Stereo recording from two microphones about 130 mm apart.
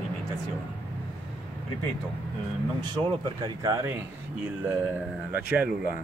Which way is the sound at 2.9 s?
45° right (ahead or behind).